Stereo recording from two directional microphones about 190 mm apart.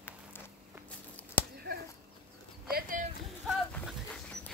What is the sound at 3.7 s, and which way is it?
Dog, 10° left (ahead or behind).